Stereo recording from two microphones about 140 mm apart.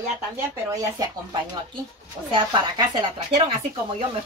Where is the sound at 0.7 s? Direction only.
25° right (ahead or behind).